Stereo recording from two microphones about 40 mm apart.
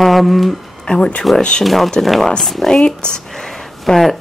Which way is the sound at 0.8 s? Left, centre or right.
Centre.